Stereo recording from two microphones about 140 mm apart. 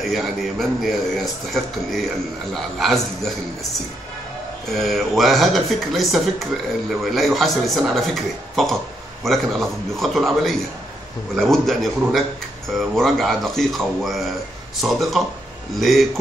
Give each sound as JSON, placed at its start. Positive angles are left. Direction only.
{"t": 0.0, "sound": "speech", "side_deg": 0}
{"t": 4.6, "sound": "speech", "side_deg": 0}